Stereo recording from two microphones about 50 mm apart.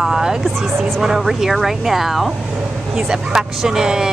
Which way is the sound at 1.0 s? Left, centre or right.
Centre.